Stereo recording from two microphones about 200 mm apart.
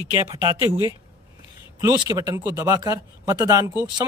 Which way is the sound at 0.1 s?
15° right (ahead or behind).